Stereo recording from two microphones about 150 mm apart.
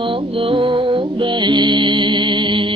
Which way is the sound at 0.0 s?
35° right (ahead or behind).